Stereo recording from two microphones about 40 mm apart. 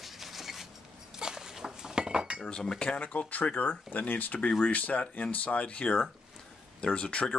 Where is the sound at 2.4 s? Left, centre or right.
Centre.